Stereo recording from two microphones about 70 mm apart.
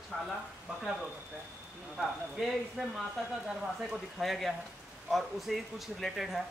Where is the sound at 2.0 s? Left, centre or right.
Centre.